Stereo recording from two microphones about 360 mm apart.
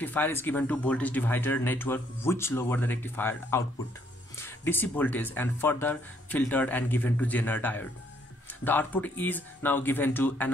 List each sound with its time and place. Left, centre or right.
0.0 s speech: centre